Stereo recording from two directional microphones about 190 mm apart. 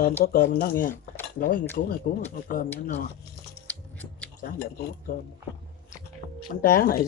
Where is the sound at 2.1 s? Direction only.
50° left (ahead or behind).